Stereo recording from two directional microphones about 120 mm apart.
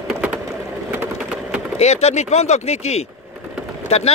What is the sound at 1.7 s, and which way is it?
Speech, 65° left (ahead or behind).